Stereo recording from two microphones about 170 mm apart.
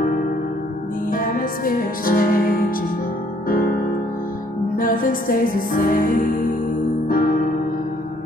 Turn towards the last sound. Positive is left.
turn(degrees=60)  # may be behind; listen again after turning